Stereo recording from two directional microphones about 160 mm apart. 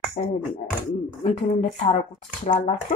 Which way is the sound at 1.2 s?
50° left (ahead or behind).